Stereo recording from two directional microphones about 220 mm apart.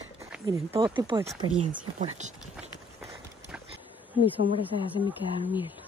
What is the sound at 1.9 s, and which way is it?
Speech, 35° right (ahead or behind).